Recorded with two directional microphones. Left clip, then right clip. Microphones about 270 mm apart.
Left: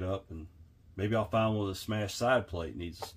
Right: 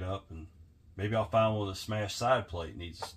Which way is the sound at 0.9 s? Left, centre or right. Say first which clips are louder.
Right 2 dB; left.